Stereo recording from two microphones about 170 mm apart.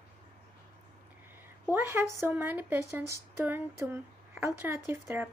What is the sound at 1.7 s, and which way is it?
Speech, 10° right (ahead or behind).